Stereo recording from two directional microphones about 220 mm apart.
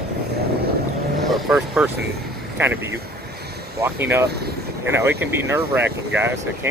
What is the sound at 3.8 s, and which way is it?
Speech, 10° right (ahead or behind).